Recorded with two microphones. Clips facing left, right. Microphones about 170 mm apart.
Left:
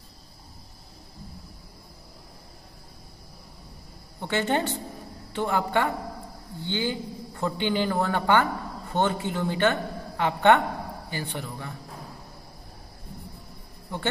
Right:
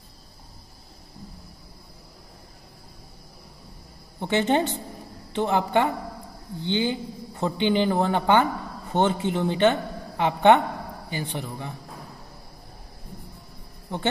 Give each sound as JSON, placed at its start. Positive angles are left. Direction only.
{"t": 4.2, "sound": "a man's voice", "side_deg": -20}